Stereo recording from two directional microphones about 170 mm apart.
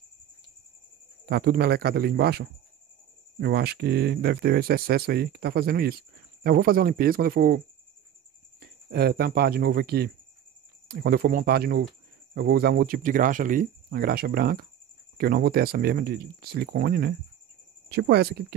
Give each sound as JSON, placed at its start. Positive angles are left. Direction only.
{"t": 1.3, "sound": "speech", "side_deg": -70}
{"t": 17.8, "sound": "speech", "side_deg": -75}